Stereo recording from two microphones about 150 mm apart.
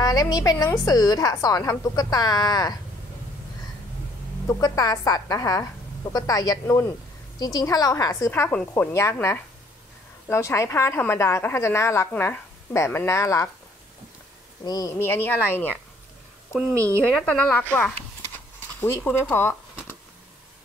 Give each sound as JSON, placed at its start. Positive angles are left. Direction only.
{"t": 0.0, "sound": "a woman's voice", "side_deg": 25}
{"t": 4.5, "sound": "a woman's voice", "side_deg": 20}
{"t": 14.6, "sound": "a woman's voice", "side_deg": 25}
{"t": 16.7, "sound": "speech", "side_deg": -20}
{"t": 17.1, "sound": "a woman's voice", "side_deg": 5}